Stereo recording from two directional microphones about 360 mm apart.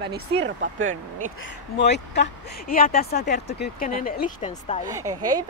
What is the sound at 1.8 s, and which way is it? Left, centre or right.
Speech, left.